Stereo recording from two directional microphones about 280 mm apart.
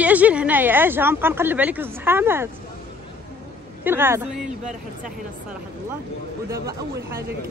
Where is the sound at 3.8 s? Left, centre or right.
Centre.